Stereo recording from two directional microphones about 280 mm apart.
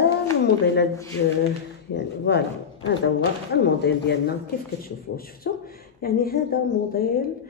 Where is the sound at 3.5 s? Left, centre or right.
Left.